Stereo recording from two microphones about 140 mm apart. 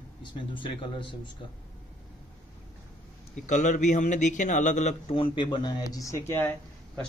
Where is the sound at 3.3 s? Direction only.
60° left (ahead or behind); by 6.5 s 20° left (ahead or behind).